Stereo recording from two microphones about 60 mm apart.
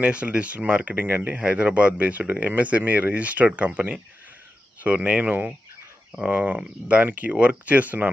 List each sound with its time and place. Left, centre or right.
0.0 s speech: centre